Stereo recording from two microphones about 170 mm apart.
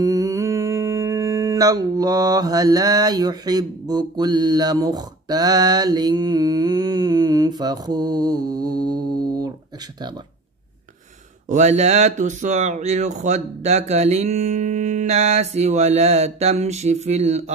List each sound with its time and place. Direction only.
0.0 s humming: 20° right (ahead or behind)
11.4 s speech: 45° right (ahead or behind)